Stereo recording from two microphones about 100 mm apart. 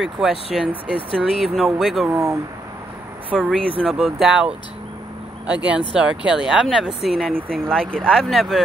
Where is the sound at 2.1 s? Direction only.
35° right (ahead or behind).